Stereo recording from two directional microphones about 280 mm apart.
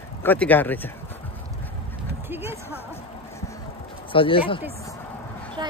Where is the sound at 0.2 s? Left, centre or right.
Centre.